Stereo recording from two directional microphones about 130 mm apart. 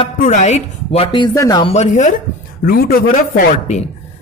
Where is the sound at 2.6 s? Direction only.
90° left.